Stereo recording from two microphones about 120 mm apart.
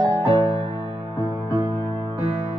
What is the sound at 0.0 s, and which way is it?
Music, 35° right (ahead or behind).